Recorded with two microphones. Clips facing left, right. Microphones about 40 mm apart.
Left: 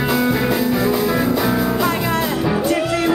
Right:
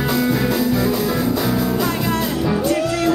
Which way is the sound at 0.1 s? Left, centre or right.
Centre.